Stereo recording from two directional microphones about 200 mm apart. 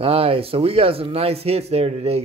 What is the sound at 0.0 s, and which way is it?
Speech, 30° right (ahead or behind).